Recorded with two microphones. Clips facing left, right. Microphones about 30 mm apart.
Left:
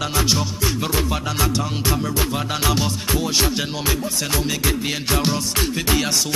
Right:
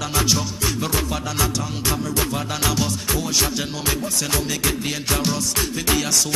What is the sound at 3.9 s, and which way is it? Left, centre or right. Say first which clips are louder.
Music: right 1 dB; centre.